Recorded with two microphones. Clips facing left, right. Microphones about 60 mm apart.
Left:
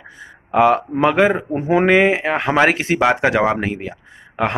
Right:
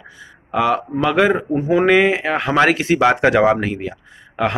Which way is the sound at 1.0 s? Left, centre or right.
Left.